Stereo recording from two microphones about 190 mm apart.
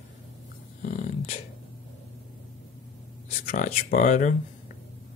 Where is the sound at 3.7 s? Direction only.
40° left (ahead or behind).